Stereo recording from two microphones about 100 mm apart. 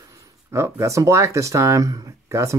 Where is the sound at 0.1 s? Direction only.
30° right (ahead or behind).